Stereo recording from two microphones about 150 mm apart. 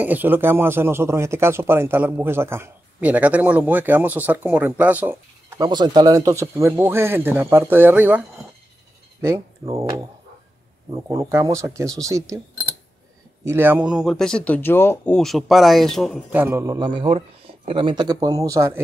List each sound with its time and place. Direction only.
0.0 s speech: 10° right (ahead or behind)
5.7 s speech: 30° right (ahead or behind)
13.4 s speech: 15° right (ahead or behind); by 15.1 s 15° left (ahead or behind)
15.1 s speech: centre (ahead or behind)
16.3 s speech: 15° right (ahead or behind)